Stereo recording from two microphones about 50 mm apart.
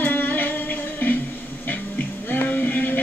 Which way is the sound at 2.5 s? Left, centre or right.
Left.